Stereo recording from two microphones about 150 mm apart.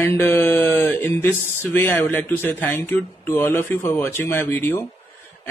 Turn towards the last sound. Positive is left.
turn(degrees=15)  # may be behind; listen again after turning